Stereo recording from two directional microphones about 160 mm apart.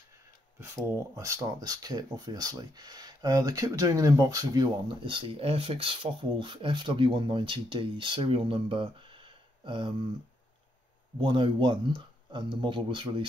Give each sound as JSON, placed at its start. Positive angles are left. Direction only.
{"t": 0.6, "sound": "speech", "side_deg": -20}
{"t": 11.1, "sound": "speech", "side_deg": -30}